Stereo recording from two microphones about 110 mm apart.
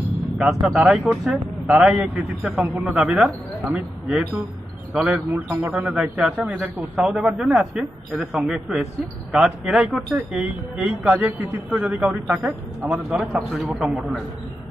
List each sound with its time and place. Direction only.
0.4 s a man's voice: centre (ahead or behind)
5.3 s speech: 20° right (ahead or behind)
5.7 s a man's voice: 10° right (ahead or behind)
12.9 s speech: 5° right (ahead or behind)